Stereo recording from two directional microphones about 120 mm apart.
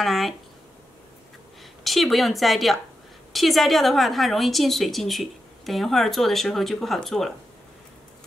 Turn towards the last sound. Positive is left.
turn(degrees=0)  # may be behind; listen again after turning